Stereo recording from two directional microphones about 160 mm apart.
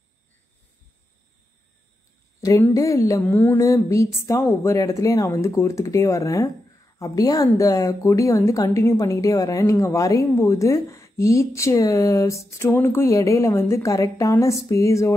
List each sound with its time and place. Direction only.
2.4 s a woman's voice: 20° left (ahead or behind)